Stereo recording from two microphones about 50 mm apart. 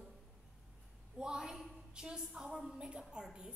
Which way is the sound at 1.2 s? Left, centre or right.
Centre.